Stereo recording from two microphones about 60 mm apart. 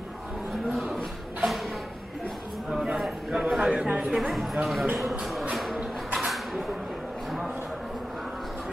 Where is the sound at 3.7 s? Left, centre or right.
Right.